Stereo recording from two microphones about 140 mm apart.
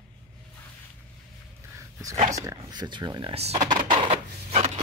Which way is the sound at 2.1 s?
55° right (ahead or behind).